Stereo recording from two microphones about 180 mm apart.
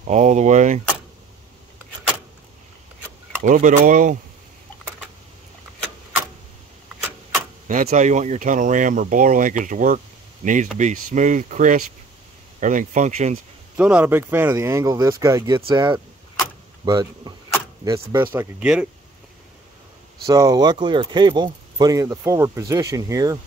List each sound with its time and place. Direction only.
0.0 s speech: 40° right (ahead or behind)
3.4 s speech: 45° right (ahead or behind)
7.6 s speech: 45° right (ahead or behind)
13.7 s speech: 5° right (ahead or behind)
20.2 s speech: 20° right (ahead or behind)